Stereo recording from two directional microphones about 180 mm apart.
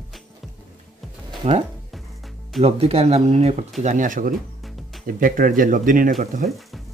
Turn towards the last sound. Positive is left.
turn(degrees=-50)  # may be behind; listen again after turning